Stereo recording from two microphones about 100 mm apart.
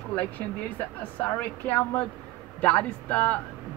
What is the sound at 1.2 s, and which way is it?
A woman's voice, 20° left (ahead or behind).